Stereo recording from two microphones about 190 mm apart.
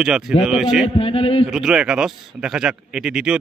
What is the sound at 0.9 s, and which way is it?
Speech, 30° left (ahead or behind).